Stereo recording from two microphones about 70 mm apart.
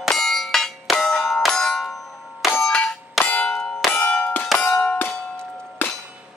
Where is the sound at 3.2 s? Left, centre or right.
Left.